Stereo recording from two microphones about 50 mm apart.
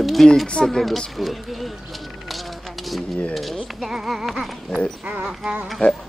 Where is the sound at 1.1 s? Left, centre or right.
Centre.